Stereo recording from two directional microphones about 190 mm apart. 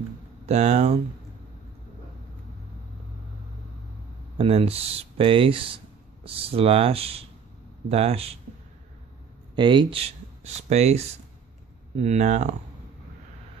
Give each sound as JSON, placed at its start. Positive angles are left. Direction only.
{"t": 0.5, "sound": "speech", "side_deg": -35}
{"t": 4.4, "sound": "speech", "side_deg": -30}
{"t": 9.6, "sound": "speech", "side_deg": -25}